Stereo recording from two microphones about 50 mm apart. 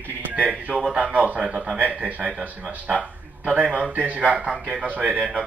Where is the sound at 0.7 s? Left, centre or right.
Centre.